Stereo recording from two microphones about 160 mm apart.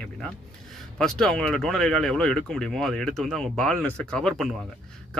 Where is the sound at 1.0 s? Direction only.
5° left (ahead or behind).